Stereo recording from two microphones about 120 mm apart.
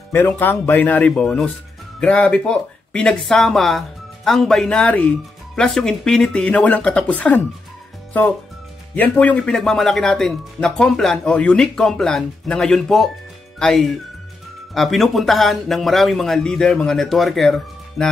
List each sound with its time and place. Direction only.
0.1 s speech: 15° left (ahead or behind)
8.9 s speech: 15° left (ahead or behind)